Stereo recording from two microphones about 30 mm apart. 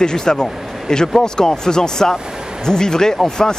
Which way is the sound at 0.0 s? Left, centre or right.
Left.